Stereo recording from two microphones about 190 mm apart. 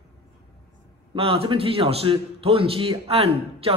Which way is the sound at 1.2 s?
30° right (ahead or behind).